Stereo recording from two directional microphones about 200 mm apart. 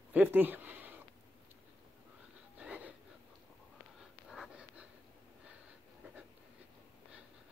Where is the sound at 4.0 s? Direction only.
Centre (ahead or behind).